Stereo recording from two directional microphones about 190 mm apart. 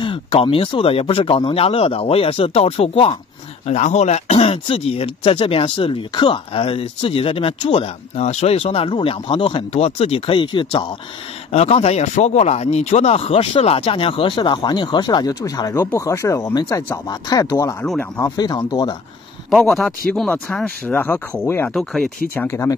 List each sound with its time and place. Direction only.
0.0 s speech: 30° left (ahead or behind)
19.5 s speech: centre (ahead or behind)
21.7 s speech: centre (ahead or behind)
22.3 s speech: 10° left (ahead or behind)